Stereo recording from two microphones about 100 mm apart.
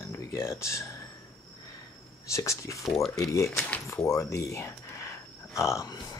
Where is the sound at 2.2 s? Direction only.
30° left (ahead or behind).